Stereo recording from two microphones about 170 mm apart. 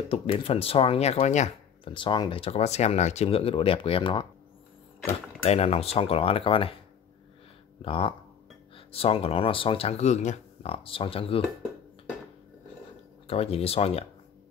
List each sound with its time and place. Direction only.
0.1 s speech: 35° left (ahead or behind)
1.9 s speech: 30° left (ahead or behind)
5.4 s speech: 35° left (ahead or behind)
7.8 s speech: 30° left (ahead or behind)
13.3 s speech: 35° left (ahead or behind)